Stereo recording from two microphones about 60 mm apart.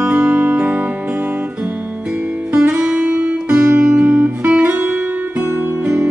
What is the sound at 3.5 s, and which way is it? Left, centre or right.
Music, right.